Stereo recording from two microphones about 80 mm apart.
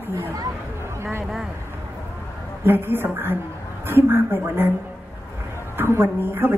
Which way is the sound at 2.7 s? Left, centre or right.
Right.